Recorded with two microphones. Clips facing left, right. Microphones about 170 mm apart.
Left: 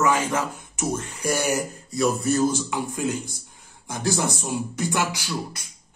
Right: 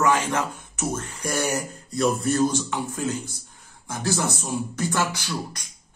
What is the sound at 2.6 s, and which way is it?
Speech, 15° left (ahead or behind).